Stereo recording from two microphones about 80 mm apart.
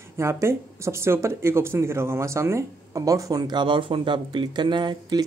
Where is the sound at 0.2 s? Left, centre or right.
Right.